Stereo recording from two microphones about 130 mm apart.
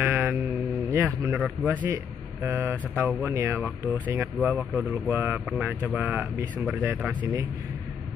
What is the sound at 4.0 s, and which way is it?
Speech, 15° right (ahead or behind).